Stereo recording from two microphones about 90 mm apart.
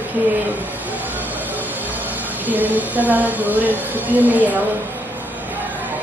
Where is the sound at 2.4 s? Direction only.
20° right (ahead or behind).